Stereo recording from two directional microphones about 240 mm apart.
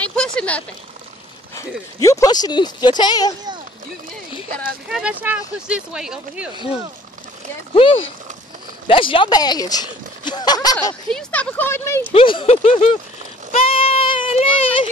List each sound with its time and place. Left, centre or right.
0.0 s speech: centre
4.8 s speech: centre
7.7 s speech: left
12.1 s speech: left
13.5 s a sound: left